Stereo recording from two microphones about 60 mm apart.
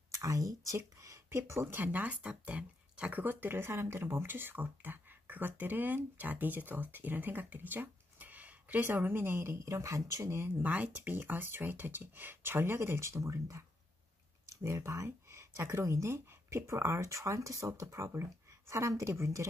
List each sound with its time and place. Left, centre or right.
0.1 s speech: right
1.8 s speech: right
3.2 s speech: right
9.6 s speech: right
10.6 s speech: right